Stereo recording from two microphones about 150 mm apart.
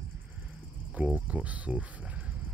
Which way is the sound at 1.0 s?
10° right (ahead or behind).